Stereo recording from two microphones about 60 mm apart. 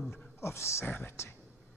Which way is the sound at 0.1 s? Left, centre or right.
Left.